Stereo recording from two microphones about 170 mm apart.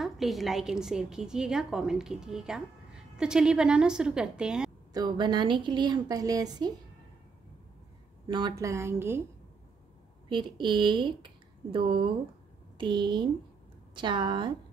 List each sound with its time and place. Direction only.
0.0 s a woman's voice: centre (ahead or behind)
4.9 s speech: 25° right (ahead or behind)
8.3 s a woman's voice: 25° right (ahead or behind)
10.3 s speech: 25° right (ahead or behind)